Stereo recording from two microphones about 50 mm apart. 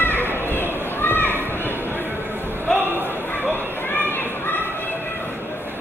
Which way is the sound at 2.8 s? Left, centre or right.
Right.